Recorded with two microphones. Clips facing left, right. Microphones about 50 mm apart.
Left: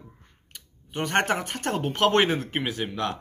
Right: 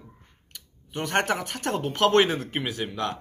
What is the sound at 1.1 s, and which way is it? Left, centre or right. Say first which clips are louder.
Speech: left 1 dB; left.